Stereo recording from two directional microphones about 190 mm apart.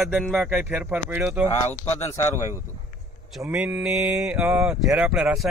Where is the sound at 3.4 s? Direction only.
5° right (ahead or behind).